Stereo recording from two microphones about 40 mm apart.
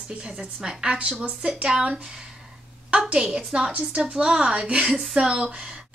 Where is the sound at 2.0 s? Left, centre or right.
Centre.